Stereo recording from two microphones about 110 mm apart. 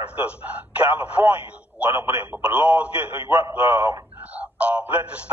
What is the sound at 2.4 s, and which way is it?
Speech, 15° right (ahead or behind).